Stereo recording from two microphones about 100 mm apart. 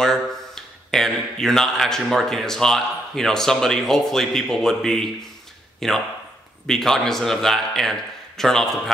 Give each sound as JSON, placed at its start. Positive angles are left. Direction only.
{"t": 0.0, "sound": "speech", "side_deg": 5}